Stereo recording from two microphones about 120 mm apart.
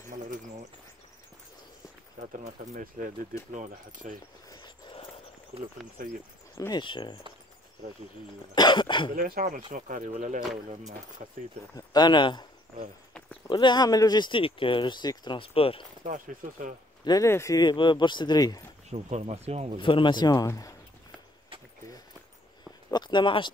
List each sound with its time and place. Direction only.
0.1 s bird: 90° right
2.1 s speech: 90° right
4.5 s a sound: 35° left (ahead or behind)
6.7 s speech: 40° left (ahead or behind)
8.5 s speech: 40° left (ahead or behind)
9.7 s speech: 90° right
11.7 s speech: 35° left (ahead or behind)
13.5 s speech: 40° left (ahead or behind)
16.1 s speech: 90° right
17.0 s speech: 30° left (ahead or behind)
18.9 s speech: 70° right (ahead or behind)
19.8 s speech: 45° left (ahead or behind)
22.8 s speech: 40° left (ahead or behind)